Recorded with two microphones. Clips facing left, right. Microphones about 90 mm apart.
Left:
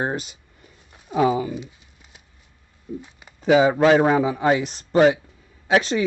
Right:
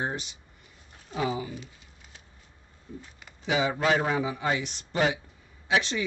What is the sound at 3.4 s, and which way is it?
Speech, 45° left (ahead or behind).